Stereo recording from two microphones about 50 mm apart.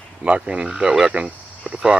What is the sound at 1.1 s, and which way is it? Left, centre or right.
Cricket, right.